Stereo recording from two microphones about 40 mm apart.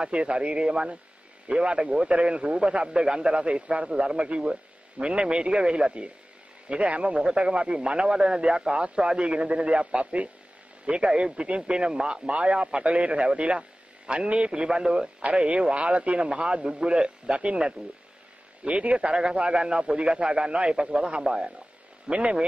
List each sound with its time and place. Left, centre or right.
0.0 s a man's voice: right
10.9 s a man's voice: right